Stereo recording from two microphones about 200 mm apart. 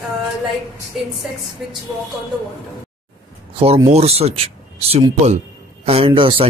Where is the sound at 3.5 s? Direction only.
25° right (ahead or behind).